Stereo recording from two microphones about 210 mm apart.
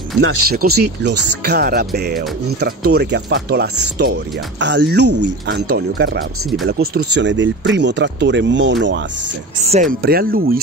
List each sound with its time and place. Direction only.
0.2 s speech: 90° right
0.5 s speech: 45° right (ahead or behind)
9.7 s speech: 40° right (ahead or behind)